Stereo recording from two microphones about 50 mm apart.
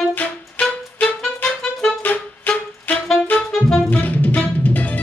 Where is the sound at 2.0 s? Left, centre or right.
Left.